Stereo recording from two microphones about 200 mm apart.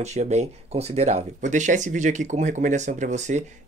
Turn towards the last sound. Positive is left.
turn(degrees=-35)  # may be behind; listen again after turning